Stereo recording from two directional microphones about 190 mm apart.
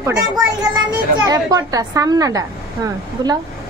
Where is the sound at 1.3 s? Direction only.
20° right (ahead or behind).